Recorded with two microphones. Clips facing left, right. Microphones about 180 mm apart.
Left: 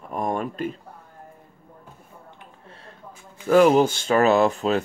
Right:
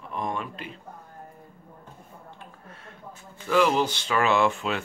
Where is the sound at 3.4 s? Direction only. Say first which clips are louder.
Left 7 dB; 45° left (ahead or behind).